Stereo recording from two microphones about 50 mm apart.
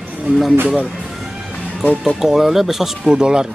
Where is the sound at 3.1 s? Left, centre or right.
Centre.